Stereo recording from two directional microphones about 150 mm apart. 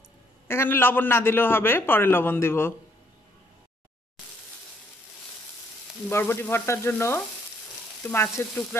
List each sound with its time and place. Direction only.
0.5 s a man's voice: 15° left (ahead or behind)
6.0 s a man's voice: 15° left (ahead or behind)